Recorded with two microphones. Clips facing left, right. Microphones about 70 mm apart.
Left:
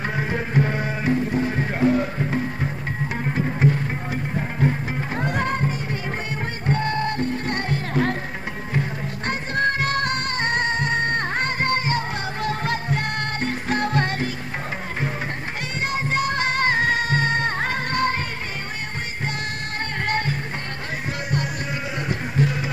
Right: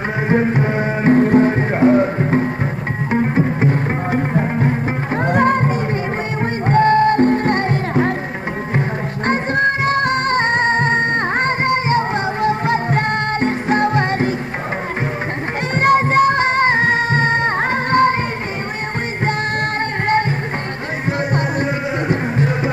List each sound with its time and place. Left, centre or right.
0.3 s music: right
1.1 s music: right
1.5 s music: right
3.7 s music: right
9.3 s music: right
15.7 s music: right
20.1 s music: right